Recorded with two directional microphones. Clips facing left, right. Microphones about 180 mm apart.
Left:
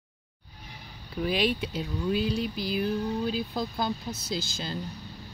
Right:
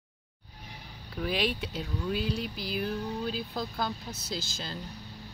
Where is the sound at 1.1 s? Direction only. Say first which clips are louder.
Left 4 dB; centre (ahead or behind).